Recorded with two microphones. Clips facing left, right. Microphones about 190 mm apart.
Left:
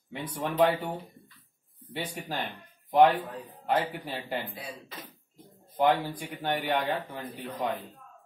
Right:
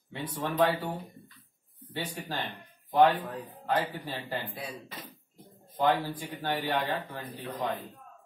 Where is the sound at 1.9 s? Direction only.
15° left (ahead or behind).